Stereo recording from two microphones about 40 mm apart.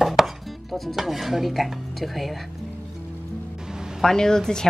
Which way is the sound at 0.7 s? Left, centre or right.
Centre.